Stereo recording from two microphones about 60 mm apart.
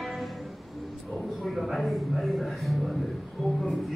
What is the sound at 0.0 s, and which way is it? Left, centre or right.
Music, centre.